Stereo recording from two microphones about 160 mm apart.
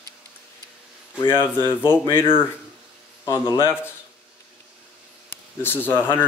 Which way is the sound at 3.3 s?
25° left (ahead or behind).